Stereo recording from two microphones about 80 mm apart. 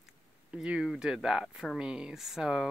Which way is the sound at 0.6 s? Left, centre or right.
Centre.